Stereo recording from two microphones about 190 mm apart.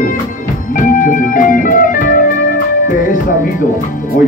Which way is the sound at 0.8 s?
45° left (ahead or behind).